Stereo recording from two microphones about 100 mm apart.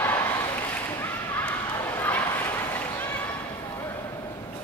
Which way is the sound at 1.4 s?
20° left (ahead or behind).